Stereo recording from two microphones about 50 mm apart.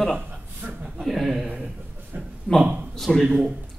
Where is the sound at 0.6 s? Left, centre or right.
Right.